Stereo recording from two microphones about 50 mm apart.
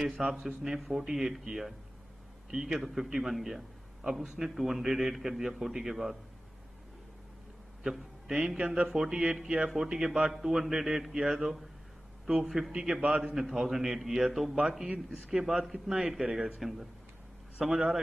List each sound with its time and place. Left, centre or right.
0.0 s a man's voice: centre
0.7 s a man's voice: centre
7.8 s a man's voice: centre
8.9 s a man's voice: centre
9.4 s a man's voice: centre
12.7 s a man's voice: centre
17.6 s a man's voice: centre